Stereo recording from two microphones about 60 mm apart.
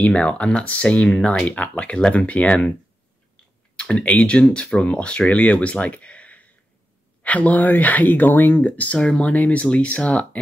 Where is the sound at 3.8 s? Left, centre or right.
Centre.